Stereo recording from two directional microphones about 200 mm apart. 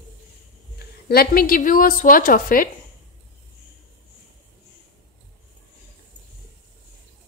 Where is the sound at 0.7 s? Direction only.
50° left (ahead or behind).